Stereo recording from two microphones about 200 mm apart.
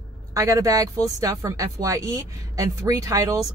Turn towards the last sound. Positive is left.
turn(degrees=-15)  # may be behind; listen again after turning